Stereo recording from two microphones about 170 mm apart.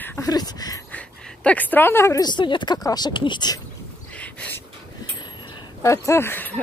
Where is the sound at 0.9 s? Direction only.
10° left (ahead or behind); by 3.5 s 25° left (ahead or behind).